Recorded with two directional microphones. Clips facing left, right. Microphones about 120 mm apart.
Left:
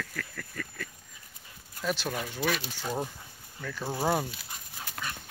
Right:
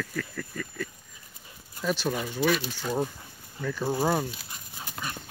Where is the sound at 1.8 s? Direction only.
Centre (ahead or behind).